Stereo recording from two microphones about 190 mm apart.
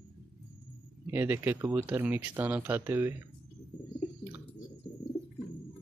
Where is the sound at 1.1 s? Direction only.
10° right (ahead or behind).